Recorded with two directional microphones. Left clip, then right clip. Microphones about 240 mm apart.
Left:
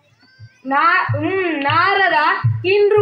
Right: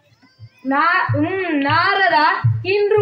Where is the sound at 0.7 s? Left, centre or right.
Left.